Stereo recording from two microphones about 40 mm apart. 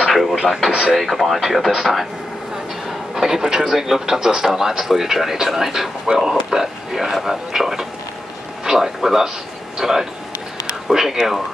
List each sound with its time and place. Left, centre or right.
0.0 s a sound: centre
0.7 s speech: centre
0.9 s speech: centre
3.2 s a man's voice: centre